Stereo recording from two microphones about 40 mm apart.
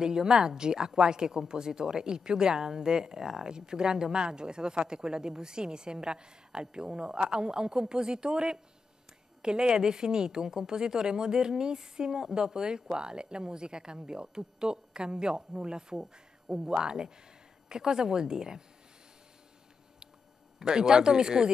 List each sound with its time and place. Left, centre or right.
0.0 s a woman's voice: centre
20.5 s a woman's voice: centre